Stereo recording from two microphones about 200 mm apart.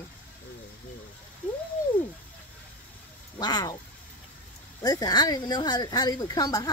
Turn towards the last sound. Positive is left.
turn(degrees=20)  # may be behind; listen again after turning